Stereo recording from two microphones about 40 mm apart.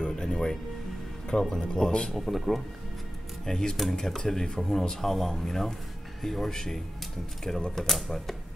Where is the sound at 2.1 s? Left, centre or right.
Centre.